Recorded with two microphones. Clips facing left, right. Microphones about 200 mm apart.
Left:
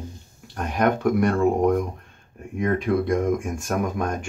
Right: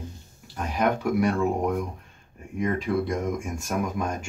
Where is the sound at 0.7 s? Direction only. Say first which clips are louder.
Left 3 dB; 55° left (ahead or behind).